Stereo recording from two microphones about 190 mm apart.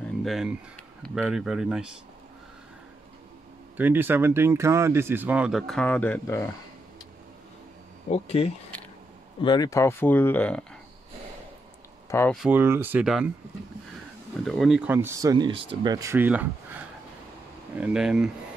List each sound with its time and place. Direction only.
0.2 s speech: centre (ahead or behind)
3.7 s speech: 10° right (ahead or behind); by 6.5 s 15° left (ahead or behind)
8.1 s speech: 30° left (ahead or behind); by 10.6 s 10° left (ahead or behind)
12.1 s speech: 15° left (ahead or behind)
12.4 s speech: 10° right (ahead or behind)
14.4 s speech: centre (ahead or behind)
17.7 s speech: 5° right (ahead or behind)